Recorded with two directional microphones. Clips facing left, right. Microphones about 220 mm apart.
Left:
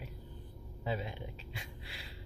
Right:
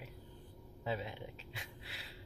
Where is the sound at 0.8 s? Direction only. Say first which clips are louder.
Left 2 dB; centre (ahead or behind).